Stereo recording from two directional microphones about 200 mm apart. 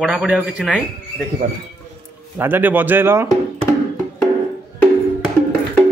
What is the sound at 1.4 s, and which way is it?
Speech, 40° right (ahead or behind).